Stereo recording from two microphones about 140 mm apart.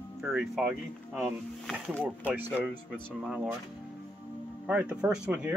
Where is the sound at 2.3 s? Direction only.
10° right (ahead or behind).